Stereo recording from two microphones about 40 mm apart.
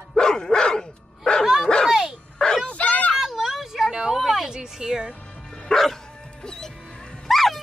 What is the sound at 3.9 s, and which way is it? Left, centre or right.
Music, centre.